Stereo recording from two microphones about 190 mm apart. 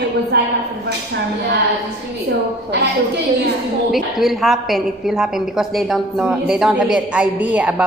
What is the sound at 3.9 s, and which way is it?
A woman's voice, centre (ahead or behind).